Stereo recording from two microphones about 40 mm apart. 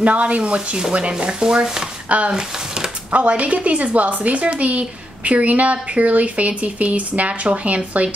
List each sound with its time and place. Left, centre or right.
0.0 s speech: right
2.0 s a woman's voice: right